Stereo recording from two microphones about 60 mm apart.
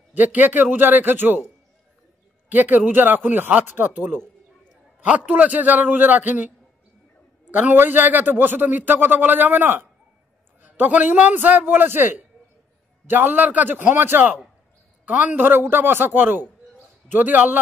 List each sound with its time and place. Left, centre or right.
0.1 s a man's voice: right
2.5 s a man's voice: right
7.5 s a man's voice: right
15.0 s a man's voice: right